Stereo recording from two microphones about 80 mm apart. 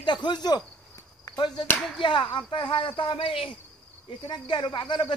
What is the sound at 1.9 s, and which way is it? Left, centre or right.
Speech, left.